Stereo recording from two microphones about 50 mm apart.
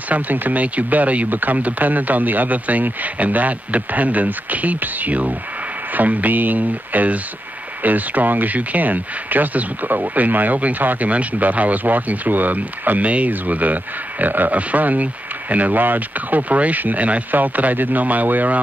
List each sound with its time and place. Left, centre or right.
0.1 s speech: right